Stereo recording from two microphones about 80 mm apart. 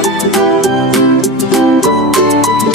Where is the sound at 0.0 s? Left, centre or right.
Centre.